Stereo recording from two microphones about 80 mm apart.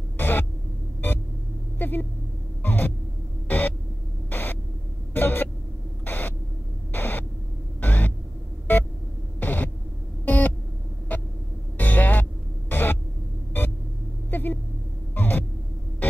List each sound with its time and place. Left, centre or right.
0.2 s a sound: left
1.8 s vehicle: left
2.6 s a sound: left
3.4 s hum: left
5.1 s a sound: left
9.4 s hum: left
10.2 s a sound: left
11.1 s vehicle: centre
11.8 s music: left
13.5 s rumble: left
14.3 s vehicle: left
15.1 s hum: left